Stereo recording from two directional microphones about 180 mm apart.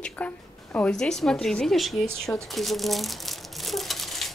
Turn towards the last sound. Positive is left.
turn(degrees=0)  # may be behind; listen again after turning